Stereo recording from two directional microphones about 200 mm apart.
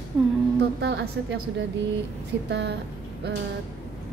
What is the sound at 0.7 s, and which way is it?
Speech, 60° right (ahead or behind).